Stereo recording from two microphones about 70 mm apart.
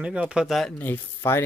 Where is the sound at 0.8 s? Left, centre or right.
Left.